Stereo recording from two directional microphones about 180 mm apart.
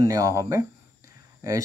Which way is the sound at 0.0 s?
15° right (ahead or behind).